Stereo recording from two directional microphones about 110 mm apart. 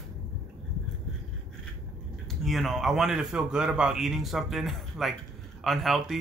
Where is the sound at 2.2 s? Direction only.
Centre (ahead or behind).